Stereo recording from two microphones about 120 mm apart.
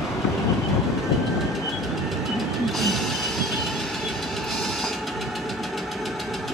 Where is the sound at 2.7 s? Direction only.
Centre (ahead or behind).